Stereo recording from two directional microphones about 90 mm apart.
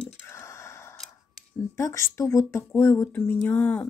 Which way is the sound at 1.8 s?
35° left (ahead or behind).